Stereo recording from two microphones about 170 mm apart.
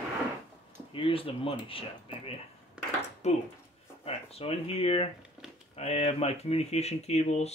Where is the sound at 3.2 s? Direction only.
40° left (ahead or behind).